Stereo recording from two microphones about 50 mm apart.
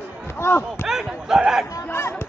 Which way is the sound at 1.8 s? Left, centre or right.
Left.